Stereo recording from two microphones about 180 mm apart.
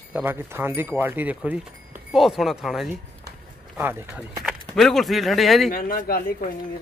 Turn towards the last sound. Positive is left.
turn(degrees=50)  # may be behind; listen again after turning